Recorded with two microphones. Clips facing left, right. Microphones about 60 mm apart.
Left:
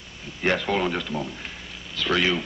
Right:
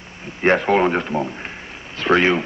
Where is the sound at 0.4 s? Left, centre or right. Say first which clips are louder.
Right 7 dB; right.